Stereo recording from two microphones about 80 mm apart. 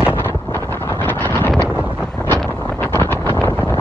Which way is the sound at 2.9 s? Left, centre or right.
Left.